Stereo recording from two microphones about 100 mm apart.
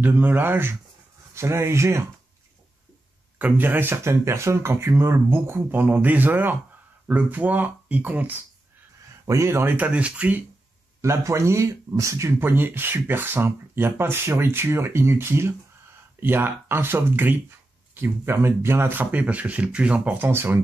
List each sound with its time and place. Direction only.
0.0 s speech: 20° right (ahead or behind)
3.3 s speech: 15° right (ahead or behind)
9.2 s speech: 30° right (ahead or behind); by 10.4 s 15° right (ahead or behind)
11.0 s speech: 30° right (ahead or behind)